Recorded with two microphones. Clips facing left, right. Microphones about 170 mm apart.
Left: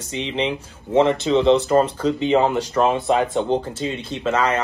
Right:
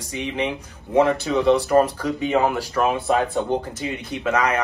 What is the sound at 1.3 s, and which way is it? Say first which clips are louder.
Speech: left 2 dB; 25° left (ahead or behind).